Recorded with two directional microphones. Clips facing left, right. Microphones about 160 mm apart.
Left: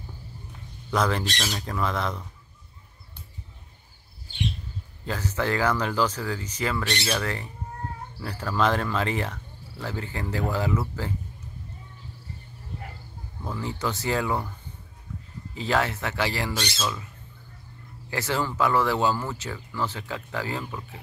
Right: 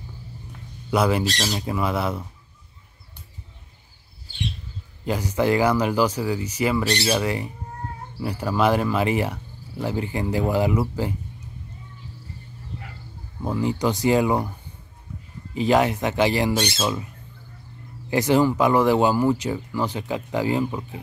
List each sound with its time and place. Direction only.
0.8 s speech: 10° right (ahead or behind)
5.0 s speech: 15° right (ahead or behind)
13.4 s speech: 20° right (ahead or behind)
15.5 s speech: 15° right (ahead or behind)
16.7 s squawk: 25° right (ahead or behind)
18.1 s speech: 15° right (ahead or behind)